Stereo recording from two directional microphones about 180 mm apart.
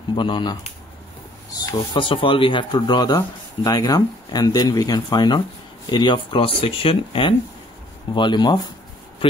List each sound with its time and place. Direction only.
0.1 s speech: 25° left (ahead or behind)